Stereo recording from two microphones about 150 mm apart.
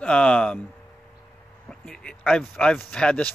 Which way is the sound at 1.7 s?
5° left (ahead or behind).